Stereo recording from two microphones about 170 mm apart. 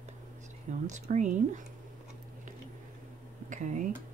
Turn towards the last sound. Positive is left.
turn(degrees=-45)  # may be behind; listen again after turning